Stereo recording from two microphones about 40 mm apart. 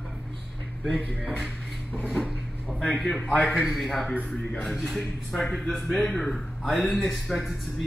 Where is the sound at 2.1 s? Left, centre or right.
Centre.